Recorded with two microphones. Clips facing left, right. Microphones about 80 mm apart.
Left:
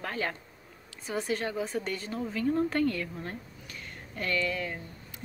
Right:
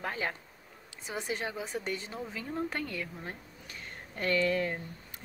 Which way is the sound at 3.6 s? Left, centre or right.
Right.